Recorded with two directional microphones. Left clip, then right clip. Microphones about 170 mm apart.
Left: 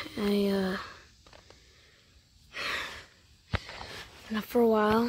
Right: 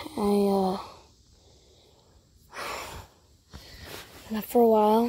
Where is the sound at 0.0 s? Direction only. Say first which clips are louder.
Right 4 dB; 5° left (ahead or behind).